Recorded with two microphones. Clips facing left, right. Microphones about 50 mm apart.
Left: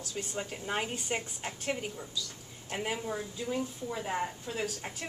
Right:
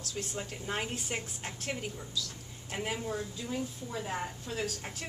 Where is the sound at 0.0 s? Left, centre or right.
Centre.